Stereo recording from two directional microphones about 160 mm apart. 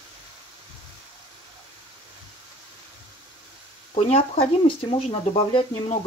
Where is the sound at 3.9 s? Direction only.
40° left (ahead or behind).